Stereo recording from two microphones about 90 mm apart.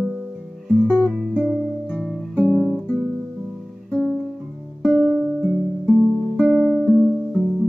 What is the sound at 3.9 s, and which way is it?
Music, 10° left (ahead or behind).